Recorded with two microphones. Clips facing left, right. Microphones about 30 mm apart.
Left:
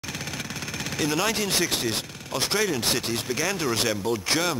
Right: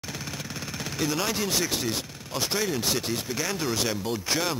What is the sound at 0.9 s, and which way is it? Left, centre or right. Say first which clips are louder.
Speech: left 3 dB; centre.